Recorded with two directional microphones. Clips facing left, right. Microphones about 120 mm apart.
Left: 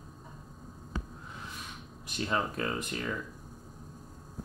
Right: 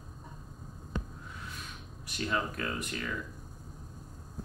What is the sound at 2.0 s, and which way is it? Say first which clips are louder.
Speech: left 1 dB; 25° left (ahead or behind).